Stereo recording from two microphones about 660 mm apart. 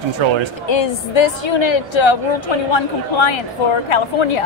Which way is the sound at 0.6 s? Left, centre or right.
Left.